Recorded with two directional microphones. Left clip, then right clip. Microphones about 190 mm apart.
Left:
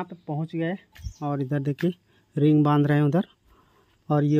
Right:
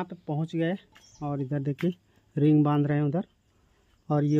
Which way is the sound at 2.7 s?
20° left (ahead or behind).